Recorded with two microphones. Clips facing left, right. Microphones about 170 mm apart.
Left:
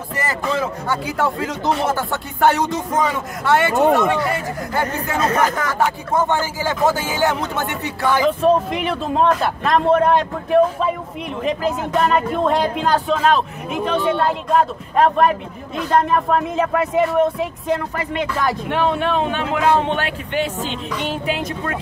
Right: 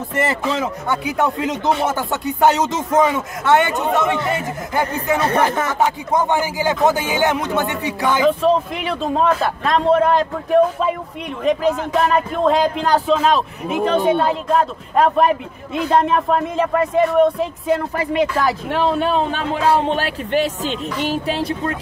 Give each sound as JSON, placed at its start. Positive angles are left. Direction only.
{"t": 0.1, "sound": "speech", "side_deg": -25}
{"t": 5.2, "sound": "speech", "side_deg": -30}
{"t": 8.2, "sound": "speech", "side_deg": 0}
{"t": 18.7, "sound": "a man's voice", "side_deg": -35}